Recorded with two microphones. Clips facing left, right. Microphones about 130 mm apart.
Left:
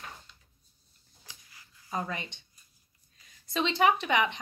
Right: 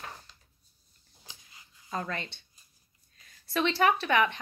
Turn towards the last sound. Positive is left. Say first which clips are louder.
# right 1 dB
turn(degrees=15)  # may be behind; listen again after turning